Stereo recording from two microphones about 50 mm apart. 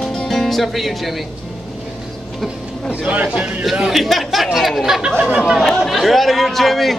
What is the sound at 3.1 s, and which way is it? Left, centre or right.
Speech, right.